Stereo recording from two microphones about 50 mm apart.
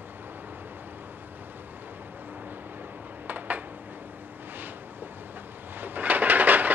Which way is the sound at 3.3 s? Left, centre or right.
Right.